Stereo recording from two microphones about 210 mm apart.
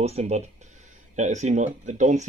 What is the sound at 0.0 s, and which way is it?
Speech, 30° right (ahead or behind).